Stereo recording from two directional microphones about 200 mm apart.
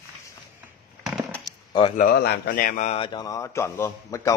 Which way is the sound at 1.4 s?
20° left (ahead or behind).